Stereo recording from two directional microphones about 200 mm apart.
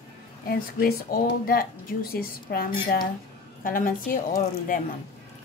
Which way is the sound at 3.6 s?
45° left (ahead or behind).